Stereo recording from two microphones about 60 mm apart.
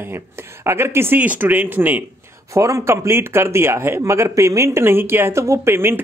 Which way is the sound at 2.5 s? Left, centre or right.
Right.